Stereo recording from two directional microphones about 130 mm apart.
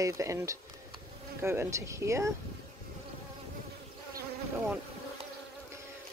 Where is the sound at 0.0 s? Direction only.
25° right (ahead or behind).